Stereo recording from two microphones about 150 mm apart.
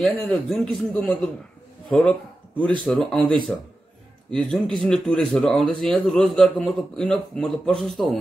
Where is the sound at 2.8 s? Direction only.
5° left (ahead or behind).